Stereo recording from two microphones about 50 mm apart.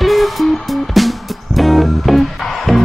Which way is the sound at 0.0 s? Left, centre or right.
Centre.